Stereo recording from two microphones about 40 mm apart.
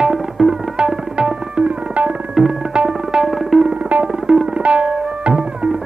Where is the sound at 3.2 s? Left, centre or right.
Centre.